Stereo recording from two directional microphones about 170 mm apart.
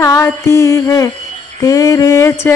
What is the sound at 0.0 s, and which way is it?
Music, 20° left (ahead or behind).